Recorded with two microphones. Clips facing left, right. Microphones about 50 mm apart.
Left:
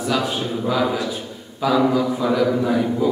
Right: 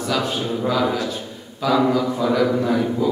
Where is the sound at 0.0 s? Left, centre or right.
Centre.